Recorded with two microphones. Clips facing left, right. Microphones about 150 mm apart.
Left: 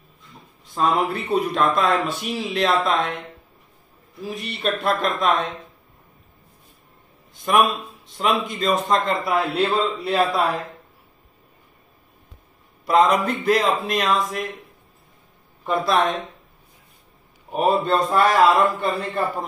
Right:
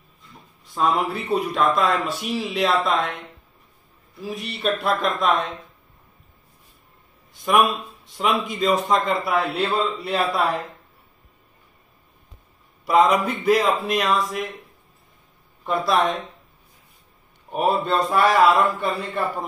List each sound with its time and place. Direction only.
0.7 s speech: centre (ahead or behind)
4.3 s speech: centre (ahead or behind)
8.2 s speech: 5° right (ahead or behind)
12.8 s speech: 5° right (ahead or behind)
15.6 s speech: centre (ahead or behind)
17.5 s speech: 5° right (ahead or behind)